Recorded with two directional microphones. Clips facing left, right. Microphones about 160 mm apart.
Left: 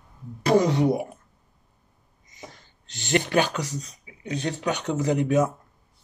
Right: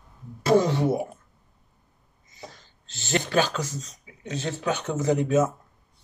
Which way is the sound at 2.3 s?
15° left (ahead or behind).